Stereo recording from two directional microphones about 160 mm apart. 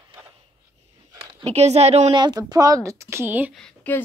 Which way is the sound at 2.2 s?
25° right (ahead or behind).